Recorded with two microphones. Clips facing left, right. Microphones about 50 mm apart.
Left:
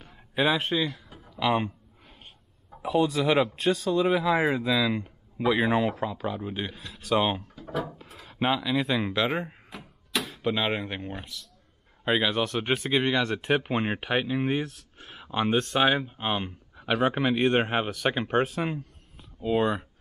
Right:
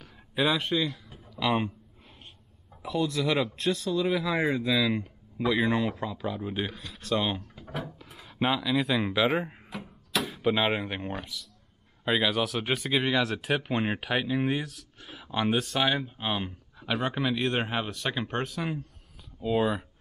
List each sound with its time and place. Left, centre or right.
0.0 s a sound: centre
0.7 s speech: centre
2.7 s speech: left
7.1 s speech: left
8.1 s a sound: centre
12.1 s speech: centre
15.8 s speech: centre
17.8 s speech: left
19.4 s speech: centre